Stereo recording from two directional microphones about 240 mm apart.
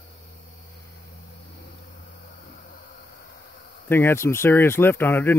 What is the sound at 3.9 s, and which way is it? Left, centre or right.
A man's voice, centre.